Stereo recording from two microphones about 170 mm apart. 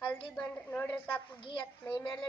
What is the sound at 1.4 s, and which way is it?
Speech, 30° left (ahead or behind).